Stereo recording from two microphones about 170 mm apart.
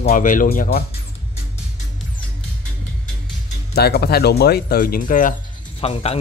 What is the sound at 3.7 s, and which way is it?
Speech, 70° left (ahead or behind).